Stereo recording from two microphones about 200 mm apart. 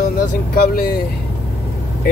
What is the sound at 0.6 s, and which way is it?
Speech, 45° left (ahead or behind).